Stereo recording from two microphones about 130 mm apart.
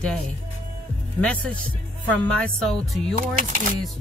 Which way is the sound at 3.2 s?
90° right.